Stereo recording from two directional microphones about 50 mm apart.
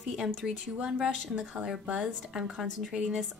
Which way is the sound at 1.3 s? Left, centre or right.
Centre.